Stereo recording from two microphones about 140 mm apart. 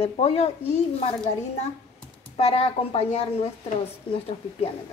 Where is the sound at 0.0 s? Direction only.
45° left (ahead or behind).